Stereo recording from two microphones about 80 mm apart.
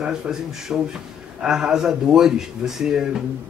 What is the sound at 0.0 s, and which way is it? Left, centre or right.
A man's voice, centre.